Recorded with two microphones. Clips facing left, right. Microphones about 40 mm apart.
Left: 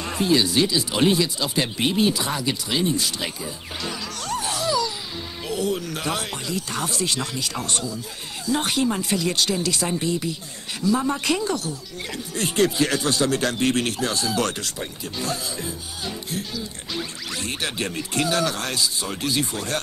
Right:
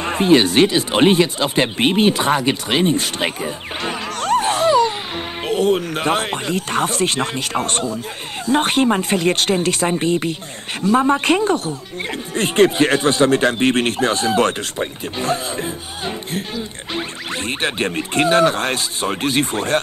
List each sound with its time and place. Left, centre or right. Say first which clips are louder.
0.0 s speech: right 7 dB; right